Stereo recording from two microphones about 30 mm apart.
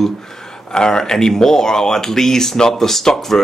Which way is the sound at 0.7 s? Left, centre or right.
Left.